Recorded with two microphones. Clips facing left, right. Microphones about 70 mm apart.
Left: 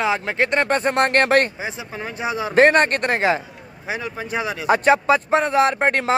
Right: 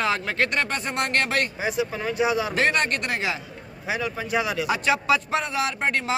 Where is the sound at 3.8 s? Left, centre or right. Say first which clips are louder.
Even; left.